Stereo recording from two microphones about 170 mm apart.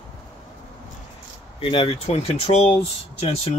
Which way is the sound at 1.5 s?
30° left (ahead or behind).